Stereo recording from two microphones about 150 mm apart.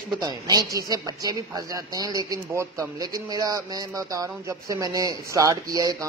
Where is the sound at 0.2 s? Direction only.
25° right (ahead or behind).